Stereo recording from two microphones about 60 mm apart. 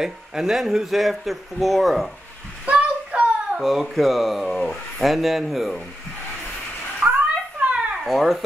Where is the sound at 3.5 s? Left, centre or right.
Centre.